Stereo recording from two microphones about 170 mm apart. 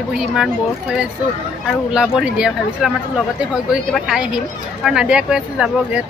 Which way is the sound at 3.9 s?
5° right (ahead or behind).